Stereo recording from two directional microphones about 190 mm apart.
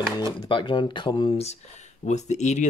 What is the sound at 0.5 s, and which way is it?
Speech, 25° left (ahead or behind).